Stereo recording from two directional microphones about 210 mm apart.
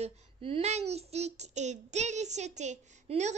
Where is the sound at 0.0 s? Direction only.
30° right (ahead or behind).